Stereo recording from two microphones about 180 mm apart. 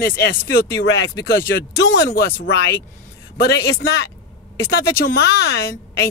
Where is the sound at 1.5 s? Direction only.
75° left (ahead or behind).